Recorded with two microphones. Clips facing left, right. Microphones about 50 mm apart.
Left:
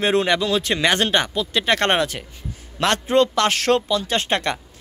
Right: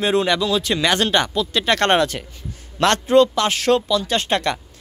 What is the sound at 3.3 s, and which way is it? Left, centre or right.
Speech, left.